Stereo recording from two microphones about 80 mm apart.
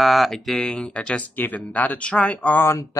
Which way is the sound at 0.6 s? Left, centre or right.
Centre.